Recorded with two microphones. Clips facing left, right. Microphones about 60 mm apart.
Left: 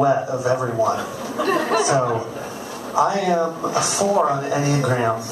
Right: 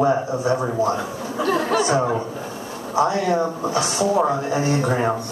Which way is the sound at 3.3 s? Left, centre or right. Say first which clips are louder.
Left 1 dB; centre.